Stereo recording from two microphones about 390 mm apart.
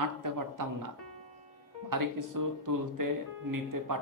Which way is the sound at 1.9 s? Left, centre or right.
Right.